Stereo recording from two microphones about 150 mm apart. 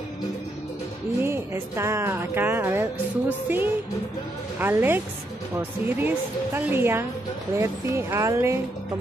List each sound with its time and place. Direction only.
1.2 s speech: 15° right (ahead or behind)